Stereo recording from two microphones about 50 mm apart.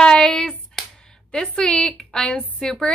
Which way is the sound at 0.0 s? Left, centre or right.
Centre.